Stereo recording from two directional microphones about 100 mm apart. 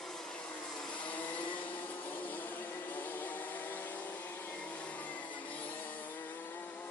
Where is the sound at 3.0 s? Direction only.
20° left (ahead or behind).